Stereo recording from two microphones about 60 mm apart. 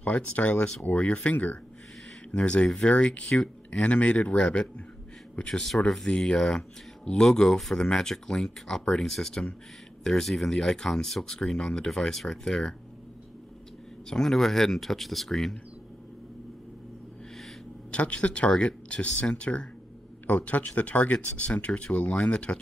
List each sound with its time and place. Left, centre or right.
0.0 s speech: left
14.0 s speech: centre
17.9 s speech: centre